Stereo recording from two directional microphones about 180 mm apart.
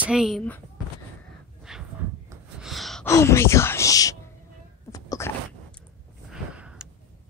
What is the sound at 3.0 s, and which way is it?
Speech, 15° left (ahead or behind).